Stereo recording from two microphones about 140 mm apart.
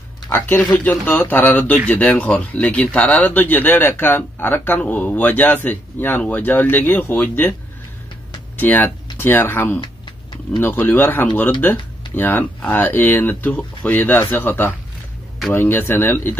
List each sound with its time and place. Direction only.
0.3 s speech: 15° left (ahead or behind)
8.5 s speech: 15° left (ahead or behind)
9.8 s a sound: 35° left (ahead or behind)
10.6 s speech: 15° left (ahead or behind)